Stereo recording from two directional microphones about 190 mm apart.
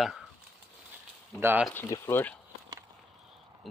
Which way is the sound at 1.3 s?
10° right (ahead or behind).